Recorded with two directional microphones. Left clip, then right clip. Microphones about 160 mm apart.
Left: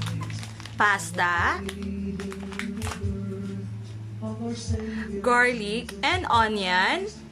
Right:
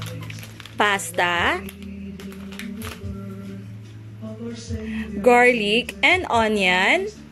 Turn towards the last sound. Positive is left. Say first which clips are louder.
# right 5 dB
turn(degrees=-10)  # may be behind; listen again after turning